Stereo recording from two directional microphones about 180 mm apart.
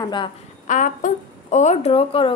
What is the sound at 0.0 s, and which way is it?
Speech, 25° left (ahead or behind).